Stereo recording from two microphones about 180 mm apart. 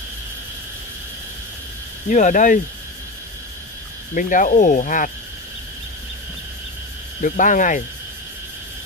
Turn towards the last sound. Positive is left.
turn(degrees=45)  # may be behind; listen again after turning